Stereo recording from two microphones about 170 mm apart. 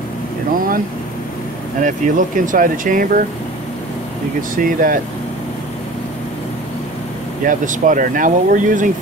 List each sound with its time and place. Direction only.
1.8 s speech: 50° right (ahead or behind)
4.4 s speech: 55° right (ahead or behind)
7.4 s speech: 50° right (ahead or behind)